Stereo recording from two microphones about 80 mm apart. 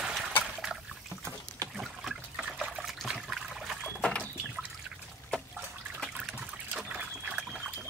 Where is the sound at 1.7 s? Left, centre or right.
Centre.